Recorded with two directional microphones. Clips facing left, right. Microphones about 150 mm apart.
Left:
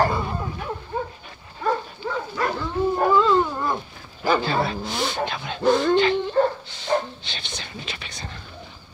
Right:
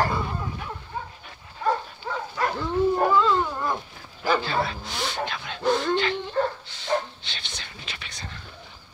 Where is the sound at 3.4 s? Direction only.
10° left (ahead or behind).